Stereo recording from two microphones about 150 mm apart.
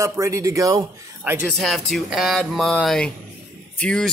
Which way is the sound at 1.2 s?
10° right (ahead or behind).